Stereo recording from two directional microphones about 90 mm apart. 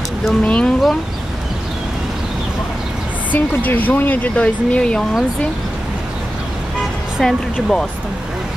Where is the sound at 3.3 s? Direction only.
20° left (ahead or behind).